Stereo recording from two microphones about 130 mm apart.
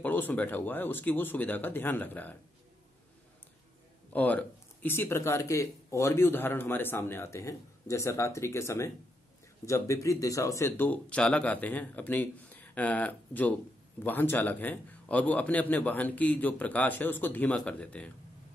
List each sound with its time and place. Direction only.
0.0 s a man's voice: 15° left (ahead or behind)
4.1 s a man's voice: 10° left (ahead or behind)